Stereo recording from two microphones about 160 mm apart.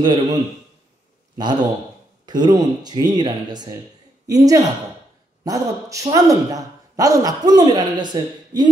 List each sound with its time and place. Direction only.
0.0 s a man's voice: 25° right (ahead or behind)
2.2 s a man's voice: 25° right (ahead or behind)